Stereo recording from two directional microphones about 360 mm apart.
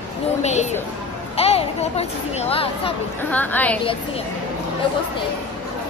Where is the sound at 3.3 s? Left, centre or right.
Centre.